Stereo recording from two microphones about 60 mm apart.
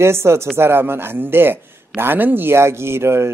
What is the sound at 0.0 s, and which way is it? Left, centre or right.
Speech, right.